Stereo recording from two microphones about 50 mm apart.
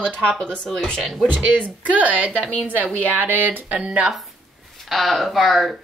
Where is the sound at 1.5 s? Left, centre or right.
Right.